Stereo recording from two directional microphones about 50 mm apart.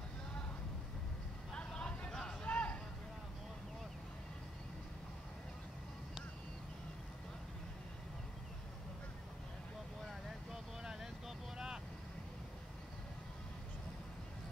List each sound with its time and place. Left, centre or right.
1.5 s vehicle: left
2.4 s a sound: left
10.5 s vehicle: centre